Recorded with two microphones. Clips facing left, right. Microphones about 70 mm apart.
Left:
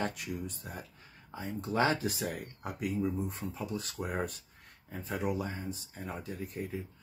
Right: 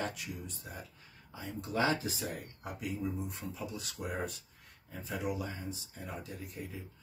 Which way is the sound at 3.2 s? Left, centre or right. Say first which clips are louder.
Left 3 dB; left.